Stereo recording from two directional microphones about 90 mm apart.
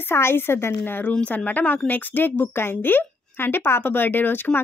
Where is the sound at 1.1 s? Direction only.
10° left (ahead or behind).